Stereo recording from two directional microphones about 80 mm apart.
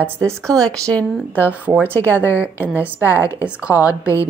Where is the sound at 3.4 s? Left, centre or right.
Centre.